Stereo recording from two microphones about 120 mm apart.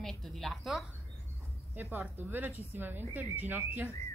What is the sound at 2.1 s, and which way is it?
Speech, 15° right (ahead or behind).